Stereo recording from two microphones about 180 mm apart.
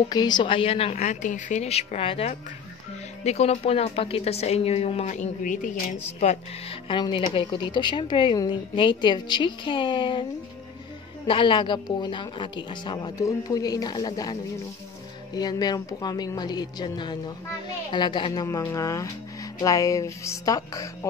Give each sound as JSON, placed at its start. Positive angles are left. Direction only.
{"t": 0.1, "sound": "speech", "side_deg": 25}
{"t": 6.1, "sound": "speech", "side_deg": 35}
{"t": 11.2, "sound": "a woman's voice", "side_deg": 30}